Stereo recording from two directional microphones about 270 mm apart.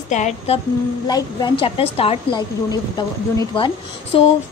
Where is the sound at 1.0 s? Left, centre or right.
Centre.